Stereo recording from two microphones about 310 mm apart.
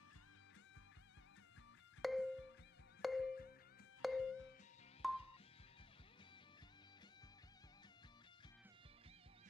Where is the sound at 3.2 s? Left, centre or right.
Left.